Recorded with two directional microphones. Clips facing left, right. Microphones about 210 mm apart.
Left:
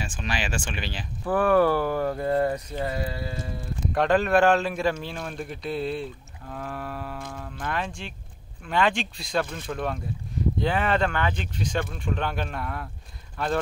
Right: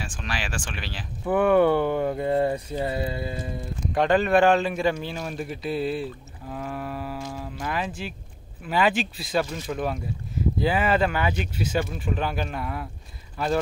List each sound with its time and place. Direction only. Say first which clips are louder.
0.0 s speech: left 2 dB; centre (ahead or behind)
1.2 s speech: right 2 dB; 20° right (ahead or behind)
3.9 s speech: right 1 dB; centre (ahead or behind)